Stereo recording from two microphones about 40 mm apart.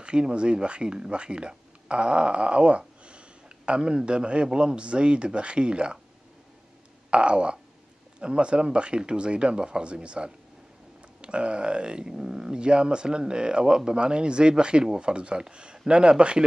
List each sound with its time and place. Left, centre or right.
0.0 s a man's voice: right
7.1 s speech: right